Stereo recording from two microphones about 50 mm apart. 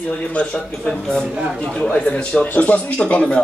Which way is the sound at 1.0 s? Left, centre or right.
Centre.